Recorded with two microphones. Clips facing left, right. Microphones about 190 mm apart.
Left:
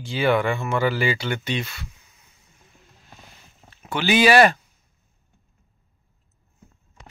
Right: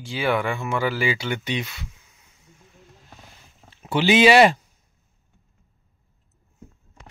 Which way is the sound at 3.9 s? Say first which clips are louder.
Right 2 dB; 25° right (ahead or behind).